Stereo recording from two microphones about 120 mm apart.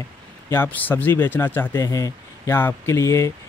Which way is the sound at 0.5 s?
15° left (ahead or behind).